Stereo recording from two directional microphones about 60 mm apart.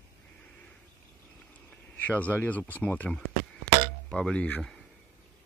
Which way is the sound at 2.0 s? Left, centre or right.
Left.